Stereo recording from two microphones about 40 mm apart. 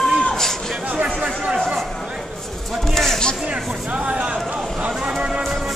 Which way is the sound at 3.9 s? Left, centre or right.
Right.